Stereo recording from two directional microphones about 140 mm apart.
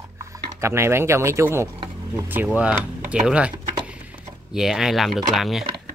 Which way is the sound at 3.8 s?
10° right (ahead or behind).